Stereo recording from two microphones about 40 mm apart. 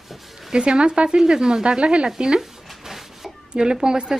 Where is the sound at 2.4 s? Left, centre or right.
Centre.